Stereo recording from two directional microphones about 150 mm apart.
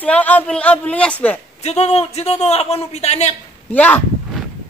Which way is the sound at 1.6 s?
45° left (ahead or behind).